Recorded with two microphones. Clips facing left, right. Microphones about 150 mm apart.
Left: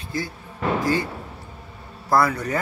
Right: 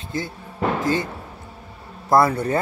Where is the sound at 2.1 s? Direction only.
25° right (ahead or behind).